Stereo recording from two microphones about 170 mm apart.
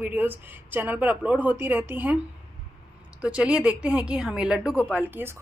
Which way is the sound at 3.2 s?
5° right (ahead or behind).